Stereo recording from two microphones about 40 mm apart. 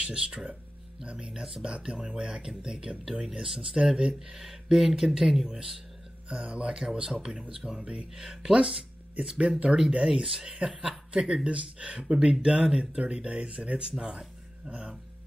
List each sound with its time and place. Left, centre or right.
0.0 s speech: right
5.0 s speech: centre
5.3 s a man's voice: centre
6.2 s speech: right
13.9 s speech: centre
14.7 s a sound: right